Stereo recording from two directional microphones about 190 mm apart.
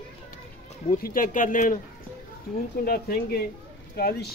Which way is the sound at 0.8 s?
45° left (ahead or behind).